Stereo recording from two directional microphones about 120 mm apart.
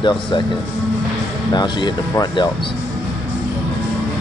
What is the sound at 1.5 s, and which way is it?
Speech, 40° left (ahead or behind).